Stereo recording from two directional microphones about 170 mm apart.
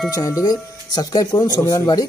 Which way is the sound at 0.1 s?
20° left (ahead or behind).